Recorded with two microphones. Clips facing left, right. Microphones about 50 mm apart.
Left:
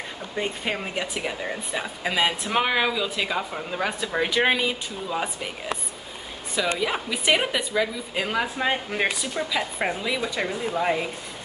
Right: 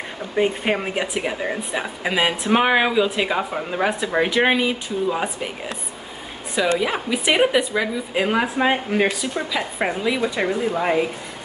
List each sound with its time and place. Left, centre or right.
0.4 s speech: right
6.8 s speech: centre
8.9 s speech: centre